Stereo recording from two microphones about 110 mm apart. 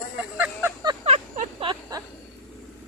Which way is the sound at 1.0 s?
65° right (ahead or behind).